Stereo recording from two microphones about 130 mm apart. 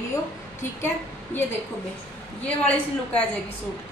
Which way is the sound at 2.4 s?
10° left (ahead or behind).